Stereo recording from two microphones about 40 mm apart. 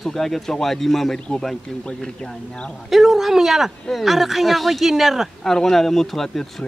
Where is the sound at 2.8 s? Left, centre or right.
Centre.